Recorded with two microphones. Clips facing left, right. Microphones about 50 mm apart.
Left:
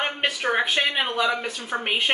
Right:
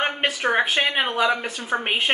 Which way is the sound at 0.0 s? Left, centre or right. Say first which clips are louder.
Right 2 dB; centre.